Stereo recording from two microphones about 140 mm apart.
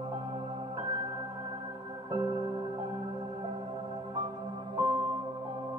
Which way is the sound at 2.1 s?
30° right (ahead or behind).